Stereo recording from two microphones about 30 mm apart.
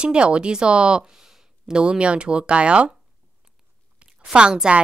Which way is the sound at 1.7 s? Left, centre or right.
Right.